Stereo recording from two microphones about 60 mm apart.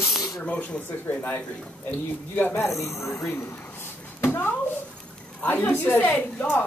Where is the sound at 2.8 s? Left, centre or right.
Left.